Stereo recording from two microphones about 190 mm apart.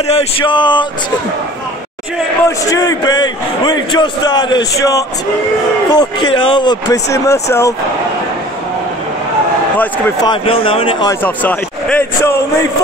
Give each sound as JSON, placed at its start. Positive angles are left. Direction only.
{"t": 0.0, "sound": "a man's voice", "side_deg": 35}
{"t": 2.4, "sound": "a man's voice", "side_deg": 15}
{"t": 10.2, "sound": "a man's voice", "side_deg": 25}
{"t": 11.1, "sound": "a man's voice", "side_deg": 10}